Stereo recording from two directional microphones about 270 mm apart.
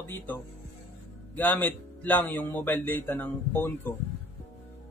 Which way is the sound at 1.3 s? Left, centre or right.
Centre.